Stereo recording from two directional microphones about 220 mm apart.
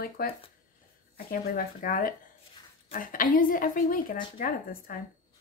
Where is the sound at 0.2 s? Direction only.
40° left (ahead or behind).